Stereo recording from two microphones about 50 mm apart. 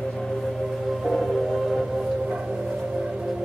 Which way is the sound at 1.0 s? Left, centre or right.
Centre.